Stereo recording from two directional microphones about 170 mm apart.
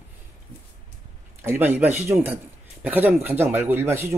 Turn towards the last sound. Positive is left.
turn(degrees=-15)  # may be behind; listen again after turning